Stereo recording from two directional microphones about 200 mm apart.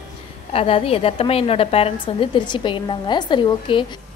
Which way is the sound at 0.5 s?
30° left (ahead or behind).